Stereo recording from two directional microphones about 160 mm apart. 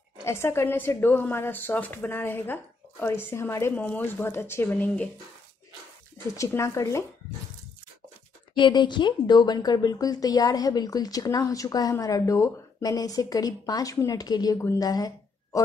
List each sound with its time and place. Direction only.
0.2 s a woman's voice: 15° left (ahead or behind)
6.3 s a woman's voice: 20° left (ahead or behind)
8.5 s a woman's voice: 30° left (ahead or behind)